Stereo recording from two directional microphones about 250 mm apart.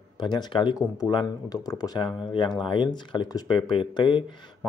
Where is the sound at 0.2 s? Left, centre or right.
Centre.